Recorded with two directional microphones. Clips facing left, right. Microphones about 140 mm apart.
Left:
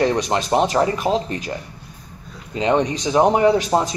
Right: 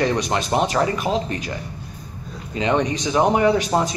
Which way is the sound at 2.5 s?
30° left (ahead or behind).